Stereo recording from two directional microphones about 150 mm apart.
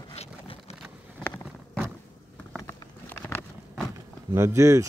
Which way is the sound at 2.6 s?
25° left (ahead or behind).